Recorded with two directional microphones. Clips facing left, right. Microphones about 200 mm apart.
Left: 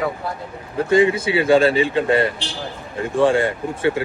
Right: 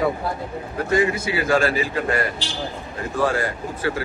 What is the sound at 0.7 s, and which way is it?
Speech, 30° left (ahead or behind).